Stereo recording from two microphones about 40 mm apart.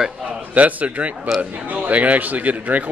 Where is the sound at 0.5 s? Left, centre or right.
Right.